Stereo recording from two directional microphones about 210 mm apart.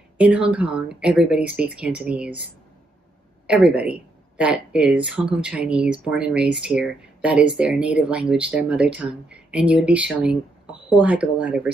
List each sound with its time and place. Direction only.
0.2 s speech: 5° right (ahead or behind)
3.4 s speech: 5° right (ahead or behind)